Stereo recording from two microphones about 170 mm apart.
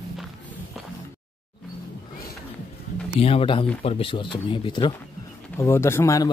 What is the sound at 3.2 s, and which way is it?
A man's voice, 35° left (ahead or behind).